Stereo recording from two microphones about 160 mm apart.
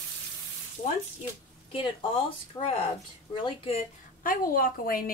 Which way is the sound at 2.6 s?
25° left (ahead or behind).